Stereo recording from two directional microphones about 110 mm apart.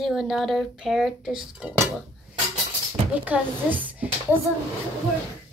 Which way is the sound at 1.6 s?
15° right (ahead or behind).